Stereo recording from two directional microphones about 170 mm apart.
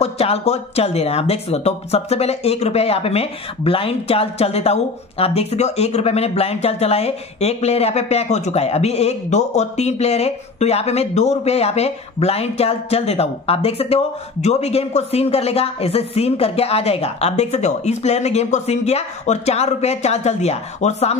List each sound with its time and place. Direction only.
0.0 s speech: 40° left (ahead or behind)